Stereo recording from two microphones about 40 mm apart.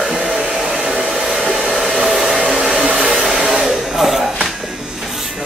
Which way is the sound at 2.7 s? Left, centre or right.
Centre.